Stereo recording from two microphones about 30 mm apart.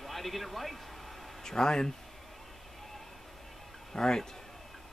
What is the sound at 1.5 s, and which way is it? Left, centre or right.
Speech, left.